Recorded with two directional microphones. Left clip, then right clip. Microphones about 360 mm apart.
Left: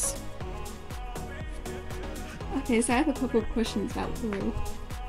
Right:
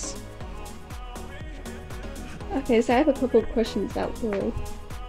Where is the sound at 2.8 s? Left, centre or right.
Left.